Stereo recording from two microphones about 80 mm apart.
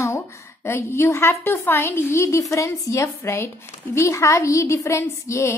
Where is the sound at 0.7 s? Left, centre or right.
Left.